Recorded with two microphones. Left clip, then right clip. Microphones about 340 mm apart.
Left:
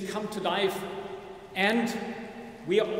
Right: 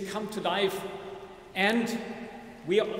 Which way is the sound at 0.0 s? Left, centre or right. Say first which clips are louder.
Left 1 dB; centre.